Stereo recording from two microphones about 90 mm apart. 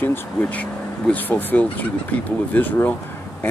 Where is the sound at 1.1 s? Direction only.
20° left (ahead or behind).